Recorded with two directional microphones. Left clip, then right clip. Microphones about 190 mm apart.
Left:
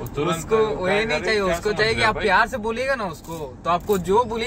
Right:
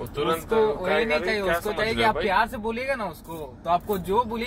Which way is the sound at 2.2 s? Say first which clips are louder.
Left 4 dB; 10° left (ahead or behind).